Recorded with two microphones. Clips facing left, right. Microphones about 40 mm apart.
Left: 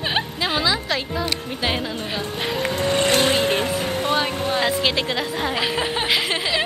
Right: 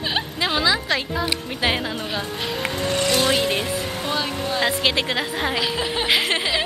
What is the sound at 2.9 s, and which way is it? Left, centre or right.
Speech, left.